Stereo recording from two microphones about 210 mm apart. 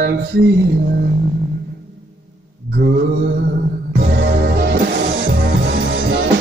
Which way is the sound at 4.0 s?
50° right (ahead or behind).